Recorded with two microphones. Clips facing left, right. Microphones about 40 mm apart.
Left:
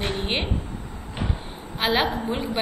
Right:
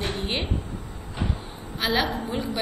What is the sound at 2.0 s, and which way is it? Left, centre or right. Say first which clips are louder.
Speech: left 2 dB; left.